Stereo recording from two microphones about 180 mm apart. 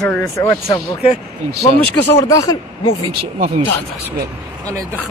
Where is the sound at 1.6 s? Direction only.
15° left (ahead or behind).